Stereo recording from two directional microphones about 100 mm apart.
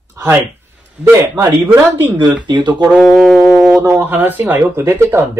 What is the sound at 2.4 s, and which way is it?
Speech, 50° right (ahead or behind).